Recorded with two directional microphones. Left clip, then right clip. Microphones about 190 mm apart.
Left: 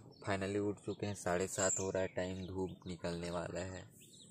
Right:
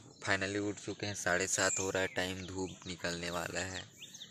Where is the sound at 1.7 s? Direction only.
15° right (ahead or behind).